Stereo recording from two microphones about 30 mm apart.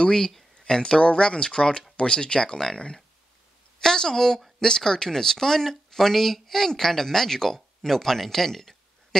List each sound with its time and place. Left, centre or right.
0.0 s speech: centre
3.8 s speech: centre